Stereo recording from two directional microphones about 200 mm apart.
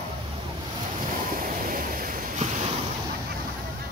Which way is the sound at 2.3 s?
35° right (ahead or behind).